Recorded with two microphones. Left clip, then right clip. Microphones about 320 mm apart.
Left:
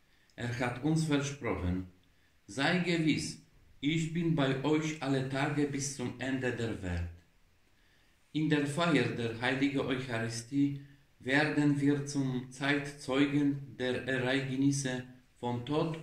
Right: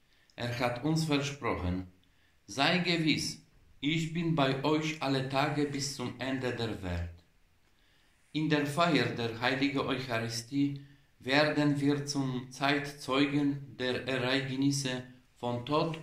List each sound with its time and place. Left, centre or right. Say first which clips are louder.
0.4 s a man's voice: right 3 dB; centre
8.3 s a man's voice: right 1 dB; centre